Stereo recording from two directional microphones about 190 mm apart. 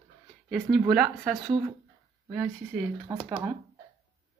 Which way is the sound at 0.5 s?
5° right (ahead or behind).